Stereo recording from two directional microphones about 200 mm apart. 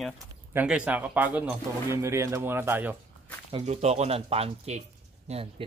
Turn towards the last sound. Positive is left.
turn(degrees=-30)  # may be behind; listen again after turning